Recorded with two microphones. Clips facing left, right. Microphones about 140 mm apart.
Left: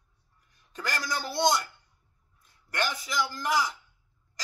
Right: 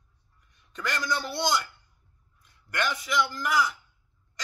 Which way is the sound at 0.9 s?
40° left (ahead or behind).